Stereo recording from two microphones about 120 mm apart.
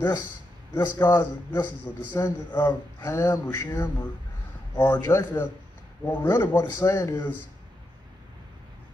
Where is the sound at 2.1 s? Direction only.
30° left (ahead or behind).